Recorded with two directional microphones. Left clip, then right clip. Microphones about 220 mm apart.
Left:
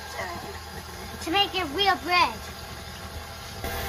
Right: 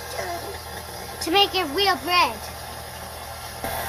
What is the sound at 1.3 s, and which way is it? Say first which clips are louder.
Speech: right 5 dB; 15° right (ahead or behind).